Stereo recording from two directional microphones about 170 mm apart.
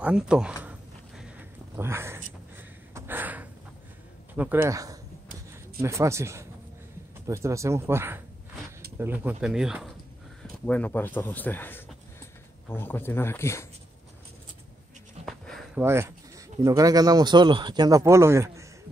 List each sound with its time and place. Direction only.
0.0 s speech: 5° right (ahead or behind)
0.7 s a sound: 5° right (ahead or behind)
1.8 s gasp: 15° right (ahead or behind)
4.4 s speech: 10° right (ahead or behind)
10.4 s speech: 10° left (ahead or behind)
15.2 s a sound: centre (ahead or behind)
15.8 s speech: 15° right (ahead or behind)